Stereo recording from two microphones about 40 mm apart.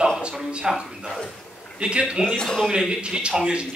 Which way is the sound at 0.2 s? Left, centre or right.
Right.